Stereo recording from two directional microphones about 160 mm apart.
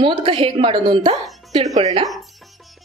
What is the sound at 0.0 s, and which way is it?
Speech, 30° right (ahead or behind).